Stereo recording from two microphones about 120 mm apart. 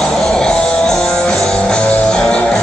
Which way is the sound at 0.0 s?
5° left (ahead or behind).